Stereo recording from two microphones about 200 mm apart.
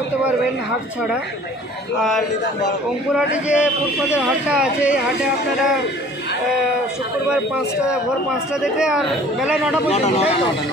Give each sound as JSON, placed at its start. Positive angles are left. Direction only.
{"t": 2.0, "sound": "a man's voice", "side_deg": 0}
{"t": 8.3, "sound": "a man's voice", "side_deg": -5}
{"t": 9.8, "sound": "speech", "side_deg": 35}